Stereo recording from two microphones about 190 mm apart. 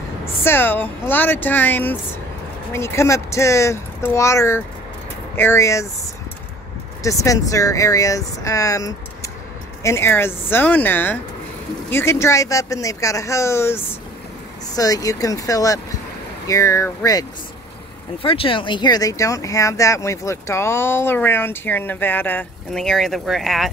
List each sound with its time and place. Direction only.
0.4 s speech: 10° left (ahead or behind)
7.0 s speech: 15° left (ahead or behind)
14.8 s speech: 20° left (ahead or behind); by 23.7 s centre (ahead or behind)